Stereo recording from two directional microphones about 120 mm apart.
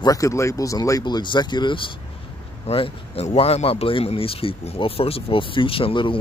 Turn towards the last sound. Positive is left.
turn(degrees=45)  # may be behind; listen again after turning